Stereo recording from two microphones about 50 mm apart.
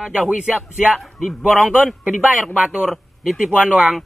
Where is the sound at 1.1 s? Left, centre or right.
Centre.